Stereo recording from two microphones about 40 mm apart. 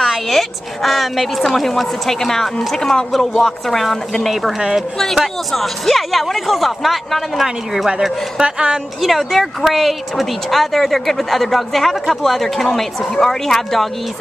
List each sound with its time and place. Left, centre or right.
0.3 s a woman's voice: centre
4.6 s speech: centre
4.9 s a woman's voice: centre
7.4 s speech: centre
8.4 s speech: right
9.0 s a woman's voice: centre